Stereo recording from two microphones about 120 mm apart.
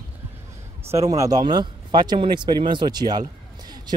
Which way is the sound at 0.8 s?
25° right (ahead or behind).